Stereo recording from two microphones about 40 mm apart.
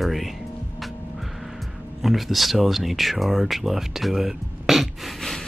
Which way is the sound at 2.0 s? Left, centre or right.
Centre.